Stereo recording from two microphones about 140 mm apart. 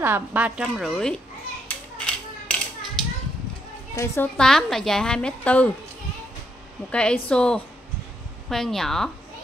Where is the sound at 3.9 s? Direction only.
20° left (ahead or behind).